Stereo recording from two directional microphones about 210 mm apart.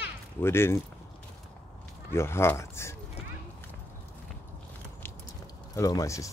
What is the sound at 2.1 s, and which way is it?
Speech, 10° left (ahead or behind).